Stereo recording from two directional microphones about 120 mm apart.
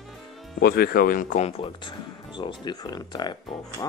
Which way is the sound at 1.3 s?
60° left (ahead or behind).